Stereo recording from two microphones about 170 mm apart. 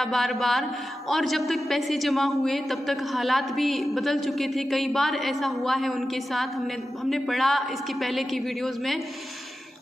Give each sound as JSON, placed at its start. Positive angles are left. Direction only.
{"t": 0.0, "sound": "a man's voice", "side_deg": 0}